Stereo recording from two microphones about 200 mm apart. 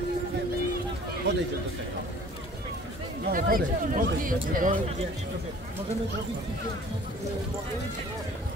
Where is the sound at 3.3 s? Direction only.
45° right (ahead or behind).